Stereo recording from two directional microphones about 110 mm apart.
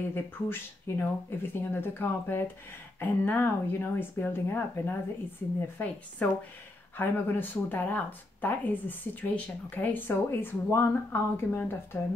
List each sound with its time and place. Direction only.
0.1 s speech: 20° left (ahead or behind)